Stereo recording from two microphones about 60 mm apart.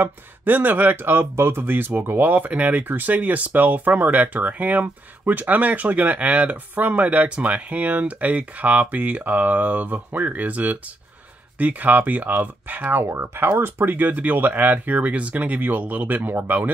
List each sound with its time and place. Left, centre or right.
0.0 s speech: right
13.0 s speech: right
13.4 s speech: right